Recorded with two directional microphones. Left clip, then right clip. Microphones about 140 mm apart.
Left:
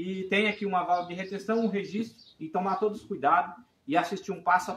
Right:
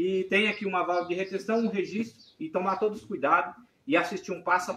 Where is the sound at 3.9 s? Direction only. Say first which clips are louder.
Right 1 dB; 35° left (ahead or behind).